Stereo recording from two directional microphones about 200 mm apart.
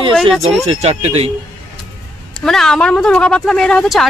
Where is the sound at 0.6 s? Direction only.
30° right (ahead or behind).